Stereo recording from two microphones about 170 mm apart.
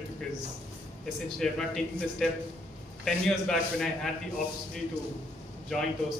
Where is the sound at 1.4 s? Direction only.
Centre (ahead or behind).